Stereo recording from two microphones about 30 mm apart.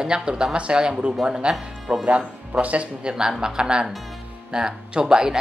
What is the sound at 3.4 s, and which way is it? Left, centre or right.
Speech, right.